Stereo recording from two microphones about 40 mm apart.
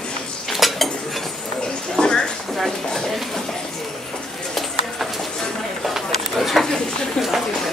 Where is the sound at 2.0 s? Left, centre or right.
Left.